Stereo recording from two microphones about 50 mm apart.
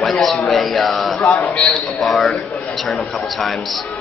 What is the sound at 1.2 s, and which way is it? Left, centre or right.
Speech, left.